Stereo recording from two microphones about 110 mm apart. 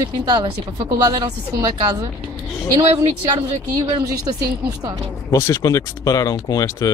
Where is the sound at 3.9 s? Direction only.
45° right (ahead or behind).